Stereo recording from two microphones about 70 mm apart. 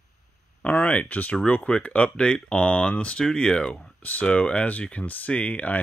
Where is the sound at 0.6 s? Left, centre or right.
Left.